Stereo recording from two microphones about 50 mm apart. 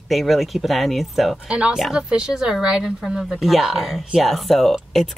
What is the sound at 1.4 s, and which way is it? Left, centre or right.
Speech, right.